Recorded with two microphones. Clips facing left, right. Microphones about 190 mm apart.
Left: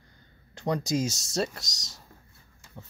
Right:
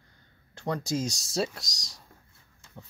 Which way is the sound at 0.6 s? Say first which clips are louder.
Left 3 dB; 15° left (ahead or behind).